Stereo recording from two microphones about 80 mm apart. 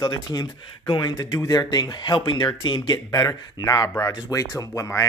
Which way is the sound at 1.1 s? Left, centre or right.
Left.